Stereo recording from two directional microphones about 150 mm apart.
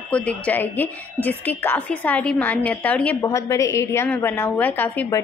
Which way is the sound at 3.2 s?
20° left (ahead or behind).